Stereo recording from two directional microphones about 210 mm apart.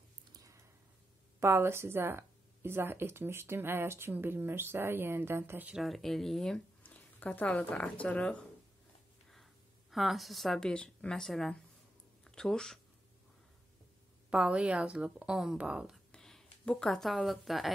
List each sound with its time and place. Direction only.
0.3 s a sound: 15° right (ahead or behind)
1.4 s a woman's voice: 10° right (ahead or behind)
14.3 s a woman's voice: 5° right (ahead or behind)